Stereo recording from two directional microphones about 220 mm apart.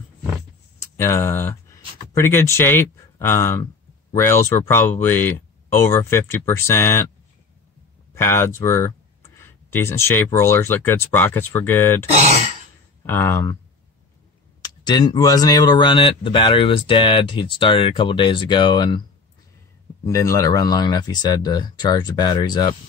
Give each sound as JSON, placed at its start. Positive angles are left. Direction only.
{"t": 0.7, "sound": "speech", "side_deg": 10}
{"t": 8.1, "sound": "speech", "side_deg": 10}
{"t": 14.6, "sound": "speech", "side_deg": 20}
{"t": 20.1, "sound": "speech", "side_deg": 15}